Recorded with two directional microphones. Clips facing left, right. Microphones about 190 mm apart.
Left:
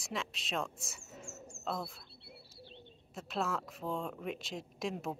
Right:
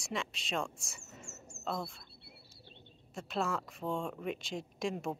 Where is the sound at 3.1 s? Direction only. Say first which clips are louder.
Right 1 dB; centre (ahead or behind).